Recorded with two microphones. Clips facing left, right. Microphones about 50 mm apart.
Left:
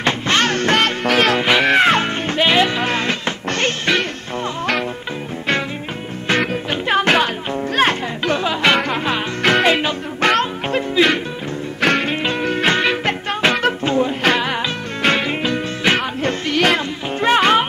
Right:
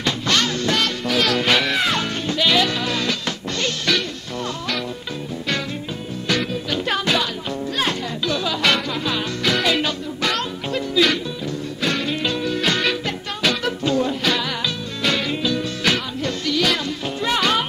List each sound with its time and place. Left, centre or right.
0.0 s music: left
1.3 s music: left
1.6 s music: left
3.4 s music: left
3.8 s music: left
7.0 s music: left
11.8 s music: left